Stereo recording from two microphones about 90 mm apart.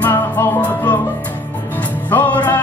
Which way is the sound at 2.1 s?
20° left (ahead or behind).